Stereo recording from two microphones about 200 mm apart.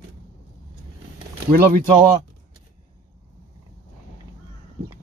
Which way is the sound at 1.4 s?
45° right (ahead or behind).